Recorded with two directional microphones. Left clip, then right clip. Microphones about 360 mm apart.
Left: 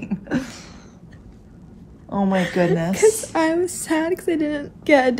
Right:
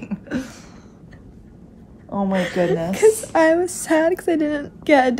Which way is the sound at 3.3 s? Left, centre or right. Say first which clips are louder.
Right 4 dB; centre.